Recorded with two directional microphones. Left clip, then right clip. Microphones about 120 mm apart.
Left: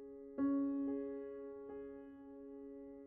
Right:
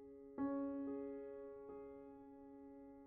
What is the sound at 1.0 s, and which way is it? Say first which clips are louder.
Music: left 4 dB; 30° left (ahead or behind).